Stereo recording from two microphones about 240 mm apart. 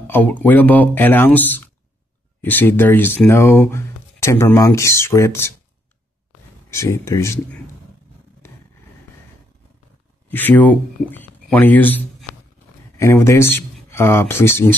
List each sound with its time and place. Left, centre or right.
0.0 s speech: centre
6.7 s speech: centre
10.3 s speech: centre